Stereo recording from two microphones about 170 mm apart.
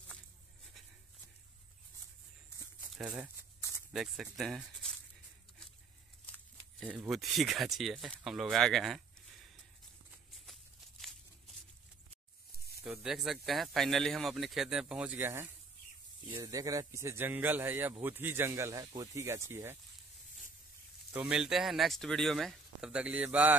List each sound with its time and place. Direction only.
2.8 s speech: 5° right (ahead or behind)
6.8 s speech: 5° right (ahead or behind)
10.1 s a sound: centre (ahead or behind)
12.8 s speech: 5° right (ahead or behind)
21.1 s speech: 5° right (ahead or behind)